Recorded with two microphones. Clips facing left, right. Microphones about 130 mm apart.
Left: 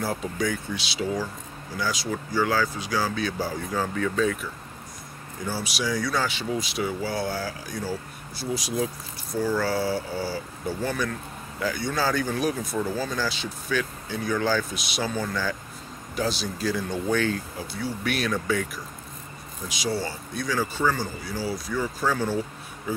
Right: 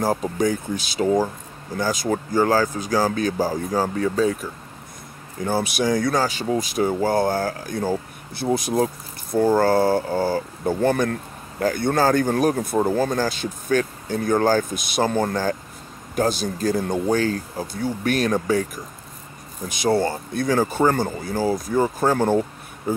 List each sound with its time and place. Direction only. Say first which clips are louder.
0.0 s speech: right 6 dB; 40° right (ahead or behind)
5.4 s speech: right 8 dB; 55° right (ahead or behind)
19.7 s speech: right 9 dB; 55° right (ahead or behind)